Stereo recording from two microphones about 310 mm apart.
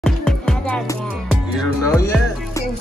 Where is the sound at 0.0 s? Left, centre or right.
Centre.